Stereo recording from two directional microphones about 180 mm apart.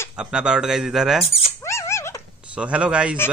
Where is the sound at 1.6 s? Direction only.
15° left (ahead or behind).